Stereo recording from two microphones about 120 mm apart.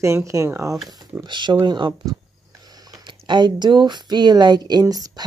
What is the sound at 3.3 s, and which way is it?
Speech, 40° right (ahead or behind).